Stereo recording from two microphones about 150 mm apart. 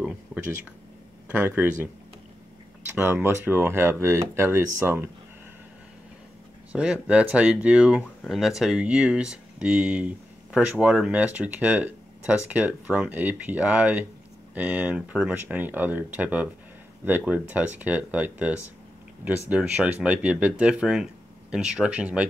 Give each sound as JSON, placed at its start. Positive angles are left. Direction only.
{"t": 1.3, "sound": "speech", "side_deg": -10}
{"t": 2.9, "sound": "speech", "side_deg": -15}
{"t": 6.7, "sound": "speech", "side_deg": -5}